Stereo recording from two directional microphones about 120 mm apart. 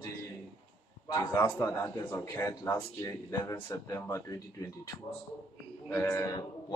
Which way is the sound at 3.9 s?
25° left (ahead or behind).